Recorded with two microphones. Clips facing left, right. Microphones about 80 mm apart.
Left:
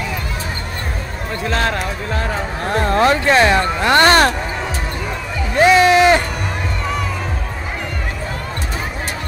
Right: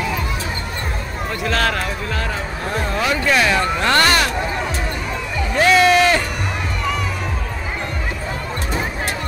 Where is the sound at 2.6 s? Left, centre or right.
Left.